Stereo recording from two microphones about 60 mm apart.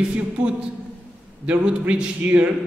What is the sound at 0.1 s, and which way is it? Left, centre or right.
A man's voice, right.